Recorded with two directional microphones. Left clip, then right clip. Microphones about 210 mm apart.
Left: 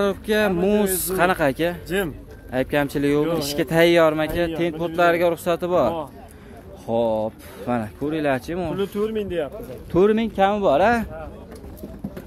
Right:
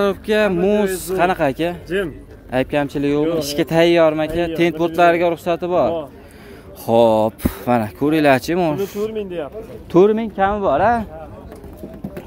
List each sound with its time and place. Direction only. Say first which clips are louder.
0.0 s speech: right 4 dB; 10° right (ahead or behind)
4.6 s speech: right 8 dB; 20° right (ahead or behind); by 5.9 s centre (ahead or behind)
6.9 s speech: right 8 dB; 30° right (ahead or behind)
7.6 s speech: right 7 dB; 20° right (ahead or behind)
8.7 s speech: right 2 dB; 55° left (ahead or behind)
9.9 s speech: right 4 dB; centre (ahead or behind)